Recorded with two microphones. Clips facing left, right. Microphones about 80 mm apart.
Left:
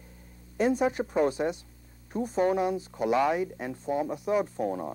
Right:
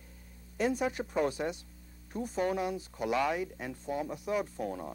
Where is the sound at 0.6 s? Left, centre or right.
Left.